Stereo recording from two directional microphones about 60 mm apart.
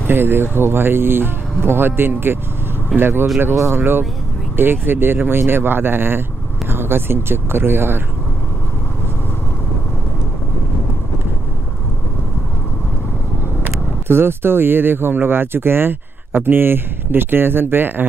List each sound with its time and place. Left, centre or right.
0.0 s speech: right
14.0 s speech: right